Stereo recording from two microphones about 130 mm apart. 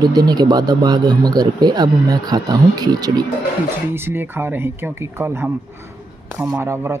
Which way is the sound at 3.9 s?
15° right (ahead or behind).